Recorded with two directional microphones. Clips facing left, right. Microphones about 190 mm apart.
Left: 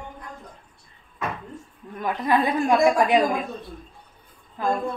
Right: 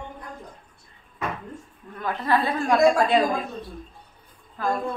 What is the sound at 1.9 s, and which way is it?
A woman's voice, 15° left (ahead or behind).